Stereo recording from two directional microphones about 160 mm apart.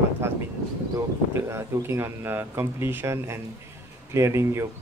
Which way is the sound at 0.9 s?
15° right (ahead or behind).